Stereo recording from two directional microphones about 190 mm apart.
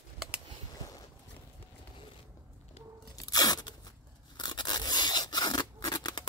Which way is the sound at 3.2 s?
20° left (ahead or behind).